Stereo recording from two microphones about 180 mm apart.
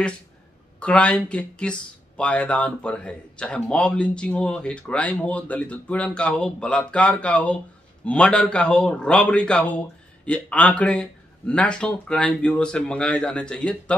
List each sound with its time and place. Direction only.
0.7 s a man's voice: 5° left (ahead or behind)